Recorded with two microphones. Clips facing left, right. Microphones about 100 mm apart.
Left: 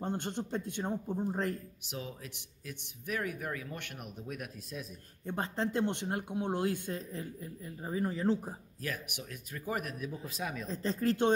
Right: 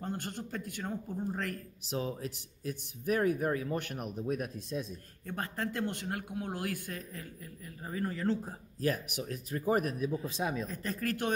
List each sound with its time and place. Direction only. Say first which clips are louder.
0.0 s speech: left 3 dB; 20° left (ahead or behind)
1.9 s speech: right 7 dB; 35° right (ahead or behind)
5.2 s speech: left 3 dB; 25° left (ahead or behind)
8.8 s speech: right 8 dB; 35° right (ahead or behind)
10.7 s speech: left 4 dB; 25° left (ahead or behind)